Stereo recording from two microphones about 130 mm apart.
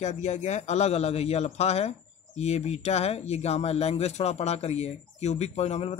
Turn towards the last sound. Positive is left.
turn(degrees=55)  # may be behind; listen again after turning